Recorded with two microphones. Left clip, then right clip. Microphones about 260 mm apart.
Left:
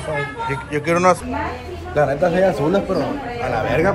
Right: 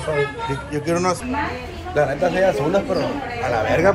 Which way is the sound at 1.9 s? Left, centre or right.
Centre.